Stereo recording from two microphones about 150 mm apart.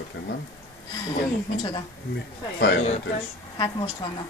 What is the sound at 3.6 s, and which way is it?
Speech, 30° left (ahead or behind).